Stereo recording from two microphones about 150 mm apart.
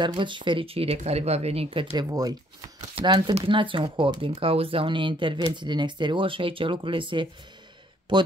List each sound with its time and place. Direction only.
0.0 s speech: 30° right (ahead or behind)
2.0 s speech: 25° right (ahead or behind)